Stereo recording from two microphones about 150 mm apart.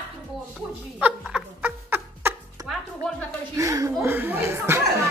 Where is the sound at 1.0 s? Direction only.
10° right (ahead or behind).